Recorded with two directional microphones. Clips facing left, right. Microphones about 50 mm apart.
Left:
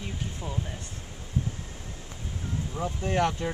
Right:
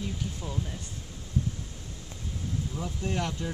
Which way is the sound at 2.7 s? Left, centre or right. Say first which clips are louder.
Left 7 dB; left.